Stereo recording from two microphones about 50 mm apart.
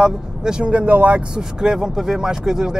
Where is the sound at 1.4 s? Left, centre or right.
Centre.